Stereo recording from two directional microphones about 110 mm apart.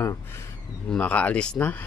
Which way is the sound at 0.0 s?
25° left (ahead or behind).